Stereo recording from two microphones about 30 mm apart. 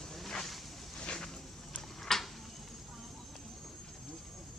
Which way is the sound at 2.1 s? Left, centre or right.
Centre.